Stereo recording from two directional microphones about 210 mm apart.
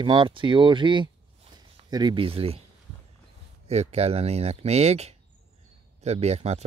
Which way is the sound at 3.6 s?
30° right (ahead or behind).